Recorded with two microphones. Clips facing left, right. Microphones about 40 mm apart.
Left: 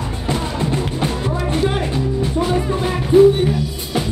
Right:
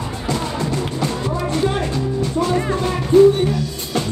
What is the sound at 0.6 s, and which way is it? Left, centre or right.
Music, left.